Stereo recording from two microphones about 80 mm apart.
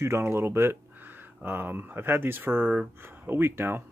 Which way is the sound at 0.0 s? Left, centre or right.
Right.